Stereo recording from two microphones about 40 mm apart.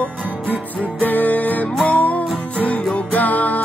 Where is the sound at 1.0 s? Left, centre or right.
Left.